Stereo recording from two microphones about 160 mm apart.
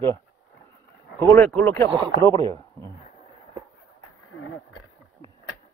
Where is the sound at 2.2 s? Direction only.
20° left (ahead or behind).